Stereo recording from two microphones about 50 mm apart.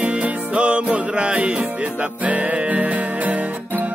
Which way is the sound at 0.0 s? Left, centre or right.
Right.